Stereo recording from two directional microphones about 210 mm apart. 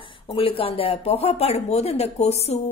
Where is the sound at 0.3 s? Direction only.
25° left (ahead or behind).